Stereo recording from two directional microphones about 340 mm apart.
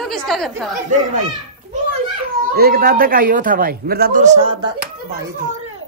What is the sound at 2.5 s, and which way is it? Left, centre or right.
A man's voice, right.